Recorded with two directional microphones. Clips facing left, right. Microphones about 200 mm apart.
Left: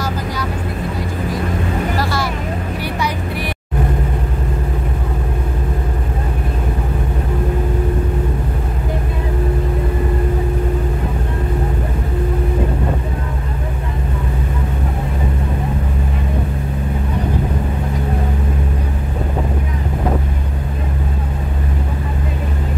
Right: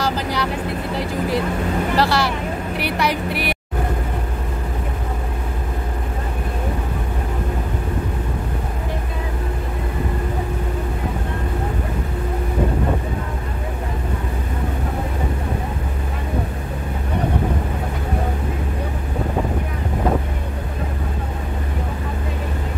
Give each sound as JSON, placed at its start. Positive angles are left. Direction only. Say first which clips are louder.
{"t": 0.0, "sound": "vehicle", "louder": "right 1 dB", "side_deg": -70}
{"t": 2.0, "sound": "vehicle", "louder": "right 2 dB", "side_deg": -70}